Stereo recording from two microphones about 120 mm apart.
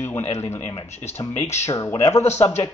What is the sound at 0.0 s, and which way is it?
Speech, 20° left (ahead or behind).